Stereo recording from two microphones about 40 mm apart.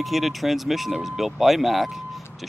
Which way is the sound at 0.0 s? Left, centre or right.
Centre.